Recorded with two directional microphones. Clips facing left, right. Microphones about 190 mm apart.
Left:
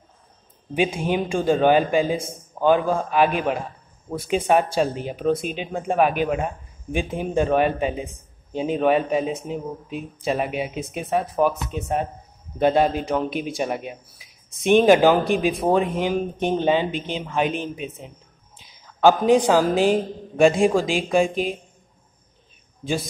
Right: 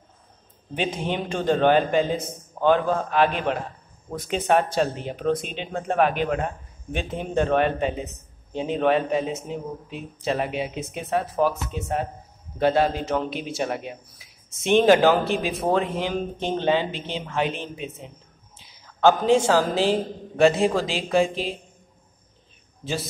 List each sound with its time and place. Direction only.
0.7 s speech: 10° left (ahead or behind)
18.9 s speech: 15° left (ahead or behind)